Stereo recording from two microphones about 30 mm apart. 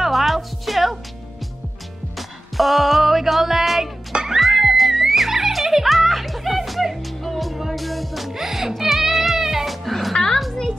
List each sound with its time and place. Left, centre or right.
0.0 s music: centre
2.1 s music: centre
4.1 s music: centre
4.4 s music: centre
9.7 s music: centre
10.1 s a sound: centre